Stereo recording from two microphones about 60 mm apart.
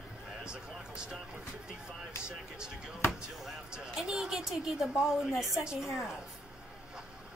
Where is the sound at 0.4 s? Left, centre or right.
Centre.